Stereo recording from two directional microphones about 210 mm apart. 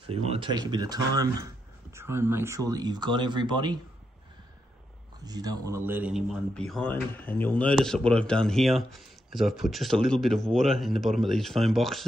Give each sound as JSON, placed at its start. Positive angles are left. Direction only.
{"t": 0.0, "sound": "speech", "side_deg": -25}
{"t": 5.2, "sound": "a man's voice", "side_deg": -20}